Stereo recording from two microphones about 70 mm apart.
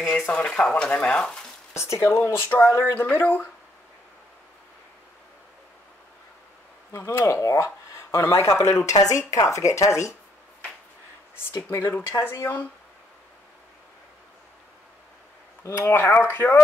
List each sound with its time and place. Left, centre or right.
0.3 s speech: centre
1.7 s speech: left
6.9 s speech: left
11.7 s speech: left
15.7 s speech: left